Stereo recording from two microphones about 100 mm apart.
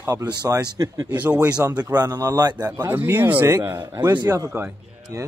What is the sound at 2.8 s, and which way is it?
Speech, 20° right (ahead or behind).